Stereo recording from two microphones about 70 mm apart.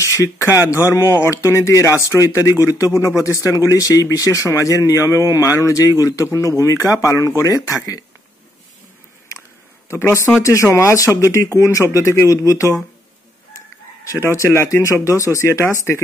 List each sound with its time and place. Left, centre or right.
0.0 s speech: left
9.8 s speech: left
14.1 s speech: left